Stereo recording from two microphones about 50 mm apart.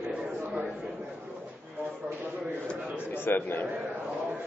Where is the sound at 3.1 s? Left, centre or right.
Left.